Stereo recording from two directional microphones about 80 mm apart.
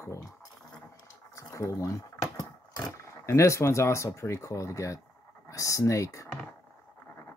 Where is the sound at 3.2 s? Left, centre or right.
Left.